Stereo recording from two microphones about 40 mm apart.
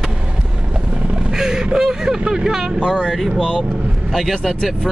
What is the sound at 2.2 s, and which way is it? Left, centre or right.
Speech, right.